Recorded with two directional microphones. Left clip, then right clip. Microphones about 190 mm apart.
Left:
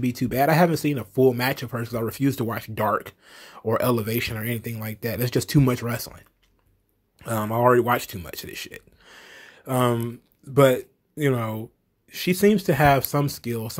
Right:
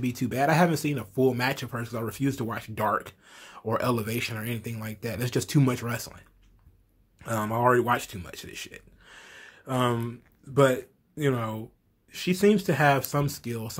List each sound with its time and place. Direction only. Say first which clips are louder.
0.0 s speech: left 4 dB; 30° left (ahead or behind)